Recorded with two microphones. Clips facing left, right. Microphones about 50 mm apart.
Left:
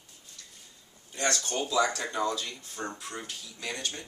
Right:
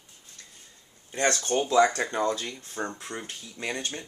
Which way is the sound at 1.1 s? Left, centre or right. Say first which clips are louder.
Right 5 dB; right.